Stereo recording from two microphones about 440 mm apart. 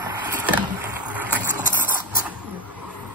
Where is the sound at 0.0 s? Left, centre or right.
Centre.